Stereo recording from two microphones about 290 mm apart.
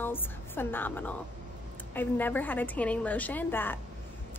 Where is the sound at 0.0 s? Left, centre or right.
Centre.